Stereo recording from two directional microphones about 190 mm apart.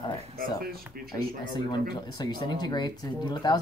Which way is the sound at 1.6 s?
25° left (ahead or behind).